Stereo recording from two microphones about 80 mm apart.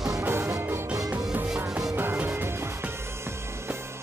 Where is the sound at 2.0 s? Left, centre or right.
Right.